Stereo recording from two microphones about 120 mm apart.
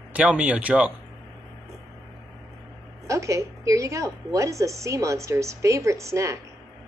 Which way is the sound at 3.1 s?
25° right (ahead or behind).